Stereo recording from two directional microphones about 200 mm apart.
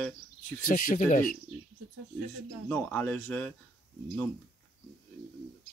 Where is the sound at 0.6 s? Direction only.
45° left (ahead or behind).